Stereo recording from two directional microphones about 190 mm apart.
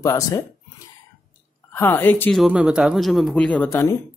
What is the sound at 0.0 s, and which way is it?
Speech, 15° left (ahead or behind).